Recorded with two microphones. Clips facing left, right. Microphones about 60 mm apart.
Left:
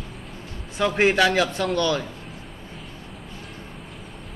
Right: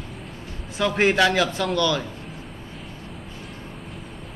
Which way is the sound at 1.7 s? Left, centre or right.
Left.